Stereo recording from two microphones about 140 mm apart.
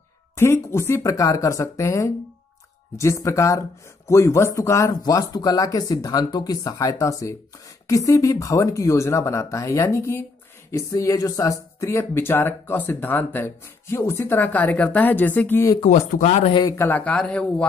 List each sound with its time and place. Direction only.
0.4 s speech: 20° left (ahead or behind)
15.9 s speech: 55° left (ahead or behind)
16.7 s speech: 15° left (ahead or behind)